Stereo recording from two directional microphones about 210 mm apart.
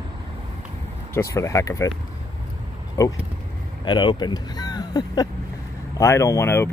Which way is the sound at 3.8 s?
20° left (ahead or behind).